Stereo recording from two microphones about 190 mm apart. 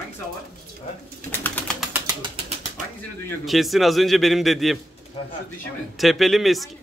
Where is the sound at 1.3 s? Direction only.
10° left (ahead or behind).